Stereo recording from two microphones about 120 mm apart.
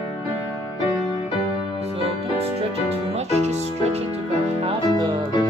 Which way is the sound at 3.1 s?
65° right (ahead or behind).